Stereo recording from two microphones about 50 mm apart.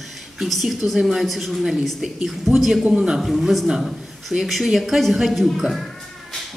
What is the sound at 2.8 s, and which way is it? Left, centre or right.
Speech, centre.